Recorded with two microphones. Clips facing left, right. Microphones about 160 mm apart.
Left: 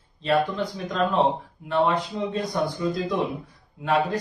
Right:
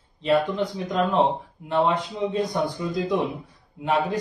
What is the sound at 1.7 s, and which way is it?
Speech, 20° right (ahead or behind).